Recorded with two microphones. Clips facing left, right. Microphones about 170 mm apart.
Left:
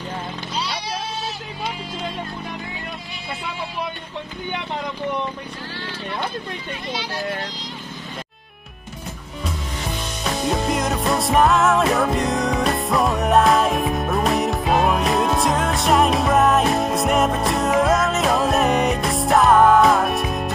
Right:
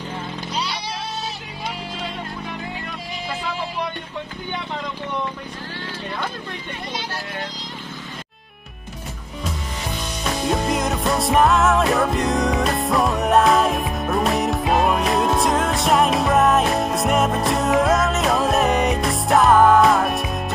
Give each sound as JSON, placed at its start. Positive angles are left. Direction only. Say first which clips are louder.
{"t": 10.2, "sound": "music", "louder": "even", "side_deg": 0}